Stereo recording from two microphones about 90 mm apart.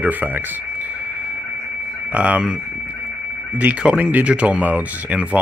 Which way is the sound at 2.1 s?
15° right (ahead or behind).